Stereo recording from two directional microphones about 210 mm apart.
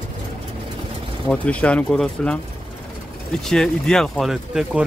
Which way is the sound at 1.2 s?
5° left (ahead or behind).